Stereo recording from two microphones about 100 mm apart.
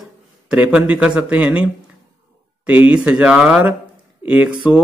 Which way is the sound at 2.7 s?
15° right (ahead or behind).